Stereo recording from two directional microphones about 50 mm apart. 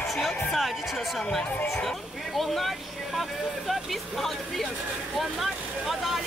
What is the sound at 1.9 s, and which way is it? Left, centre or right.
A woman's voice, centre.